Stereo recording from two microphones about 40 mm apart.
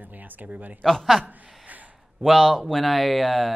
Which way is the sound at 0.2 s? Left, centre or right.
Right.